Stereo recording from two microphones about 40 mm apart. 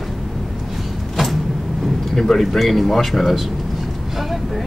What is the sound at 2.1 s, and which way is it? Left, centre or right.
Speech, centre.